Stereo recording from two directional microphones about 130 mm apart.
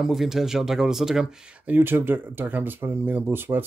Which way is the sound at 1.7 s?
15° right (ahead or behind).